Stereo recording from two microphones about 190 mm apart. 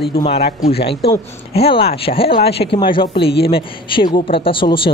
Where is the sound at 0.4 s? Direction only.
50° left (ahead or behind).